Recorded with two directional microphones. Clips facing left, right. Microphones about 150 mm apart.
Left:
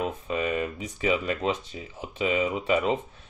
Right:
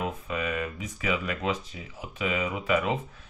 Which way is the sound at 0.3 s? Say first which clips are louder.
Left 5 dB; 30° left (ahead or behind).